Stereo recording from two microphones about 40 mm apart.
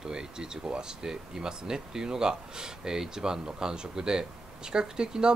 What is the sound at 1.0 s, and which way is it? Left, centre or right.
Speech, centre.